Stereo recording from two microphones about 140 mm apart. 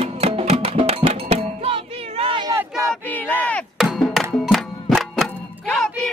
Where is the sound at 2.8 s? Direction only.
10° left (ahead or behind).